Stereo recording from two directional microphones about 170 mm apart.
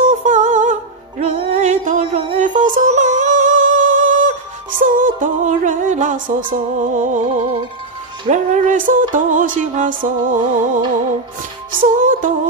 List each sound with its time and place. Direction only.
0.0 s music: 45° right (ahead or behind)
11.8 s music: 50° right (ahead or behind)